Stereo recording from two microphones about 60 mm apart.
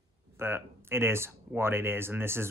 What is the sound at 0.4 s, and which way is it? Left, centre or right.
Speech, right.